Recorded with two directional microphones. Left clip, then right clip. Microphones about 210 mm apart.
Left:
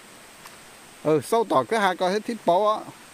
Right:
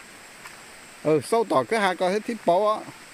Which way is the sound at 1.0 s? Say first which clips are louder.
Even; centre (ahead or behind).